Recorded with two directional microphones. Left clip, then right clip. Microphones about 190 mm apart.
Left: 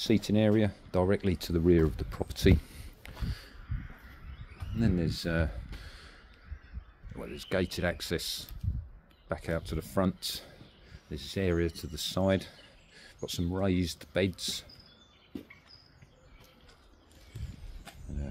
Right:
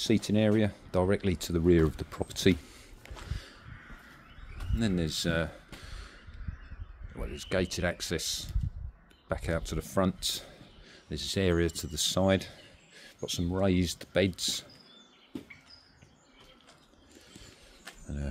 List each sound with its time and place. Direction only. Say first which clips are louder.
0.0 s speech: even; centre (ahead or behind)
2.7 s a sound: even; 10° left (ahead or behind)
4.7 s a sound: right 1 dB; 10° right (ahead or behind)
7.2 s speech: right 1 dB; 5° left (ahead or behind)
10.9 s speech: right 6 dB; 20° right (ahead or behind); by 13.6 s 5° right (ahead or behind)
13.6 s speech: right 3 dB; 15° right (ahead or behind)